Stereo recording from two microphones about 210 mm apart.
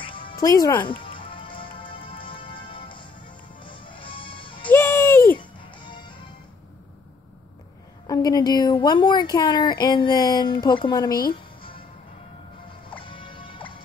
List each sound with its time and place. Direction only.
0.0 s music: 25° left (ahead or behind)
4.6 s music: 10° left (ahead or behind)
5.4 s music: 20° left (ahead or behind)
8.1 s a woman's voice: 15° left (ahead or behind)
12.6 s music: 25° left (ahead or behind)